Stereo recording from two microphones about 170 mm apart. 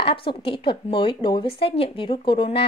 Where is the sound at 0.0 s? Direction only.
30° left (ahead or behind).